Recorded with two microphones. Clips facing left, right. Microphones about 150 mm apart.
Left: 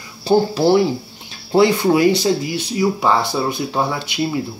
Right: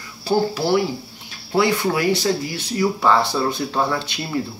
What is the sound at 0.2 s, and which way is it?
Speech, 25° left (ahead or behind).